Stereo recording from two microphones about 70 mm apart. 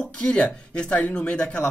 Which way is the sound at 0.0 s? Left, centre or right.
Centre.